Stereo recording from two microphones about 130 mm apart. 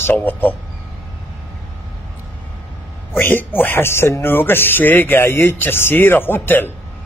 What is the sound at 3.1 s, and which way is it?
Speech, 15° left (ahead or behind).